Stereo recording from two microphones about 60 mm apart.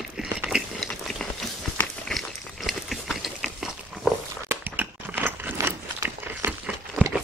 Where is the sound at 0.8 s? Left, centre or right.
Centre.